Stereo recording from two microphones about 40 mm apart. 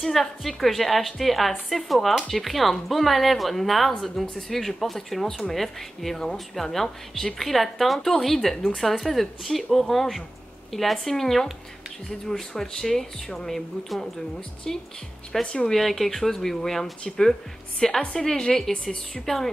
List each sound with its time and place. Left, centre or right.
0.0 s speech: centre
13.8 s speech: centre
14.7 s speech: centre
15.4 s speech: left
15.7 s speech: centre